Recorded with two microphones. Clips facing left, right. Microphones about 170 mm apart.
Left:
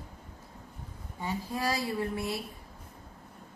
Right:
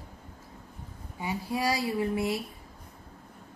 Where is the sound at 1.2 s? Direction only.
10° right (ahead or behind).